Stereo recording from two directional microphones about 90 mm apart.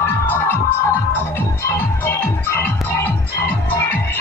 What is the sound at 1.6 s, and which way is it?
Music, 25° left (ahead or behind).